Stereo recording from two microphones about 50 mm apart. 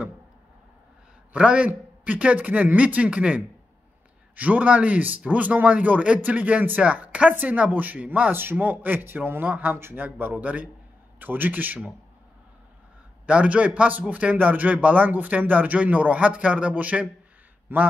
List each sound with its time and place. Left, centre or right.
1.3 s speech: right
8.3 s speech: right
9.5 s speech: right
13.3 s speech: right
17.7 s a man's voice: right